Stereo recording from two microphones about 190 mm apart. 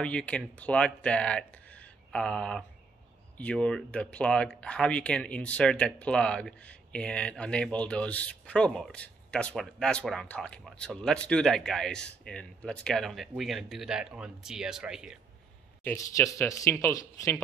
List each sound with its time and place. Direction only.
0.0 s speech: 5° left (ahead or behind)
15.8 s speech: 15° left (ahead or behind)